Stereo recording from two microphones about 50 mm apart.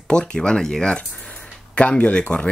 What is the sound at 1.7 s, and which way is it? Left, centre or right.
Speech, left.